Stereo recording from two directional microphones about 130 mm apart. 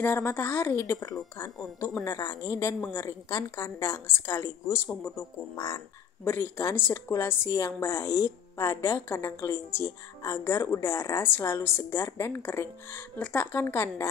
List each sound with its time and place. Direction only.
0.0 s speech: 15° left (ahead or behind)
2.0 s speech: 25° left (ahead or behind)